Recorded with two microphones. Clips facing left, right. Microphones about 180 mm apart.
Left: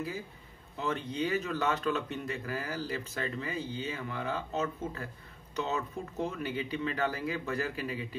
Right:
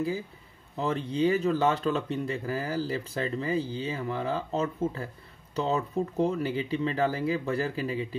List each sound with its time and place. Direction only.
0.7 s speech: 30° right (ahead or behind)